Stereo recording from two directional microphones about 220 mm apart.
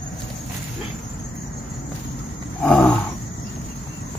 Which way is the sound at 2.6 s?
5° left (ahead or behind).